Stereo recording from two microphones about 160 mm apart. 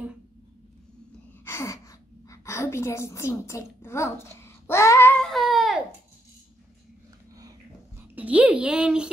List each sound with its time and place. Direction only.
1.4 s gasp: 15° left (ahead or behind); by 5.8 s centre (ahead or behind)
8.2 s speech: 10° right (ahead or behind)